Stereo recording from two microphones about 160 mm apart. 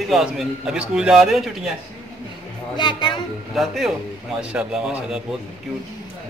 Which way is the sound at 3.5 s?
Centre (ahead or behind).